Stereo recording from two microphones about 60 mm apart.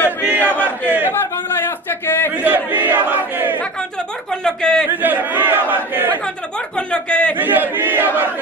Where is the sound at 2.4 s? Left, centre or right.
Right.